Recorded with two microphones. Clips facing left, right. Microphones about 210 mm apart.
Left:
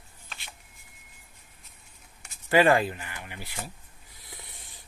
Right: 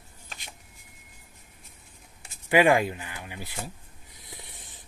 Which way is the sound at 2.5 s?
15° right (ahead or behind).